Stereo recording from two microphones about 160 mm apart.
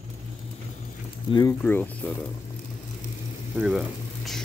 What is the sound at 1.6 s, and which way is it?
Speech, 15° left (ahead or behind).